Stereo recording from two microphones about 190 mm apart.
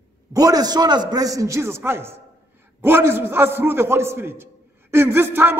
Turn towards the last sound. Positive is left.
turn(degrees=-10)  # may be behind; listen again after turning